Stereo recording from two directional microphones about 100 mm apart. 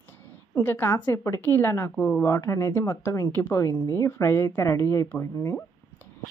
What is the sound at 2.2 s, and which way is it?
A woman's voice, 30° left (ahead or behind).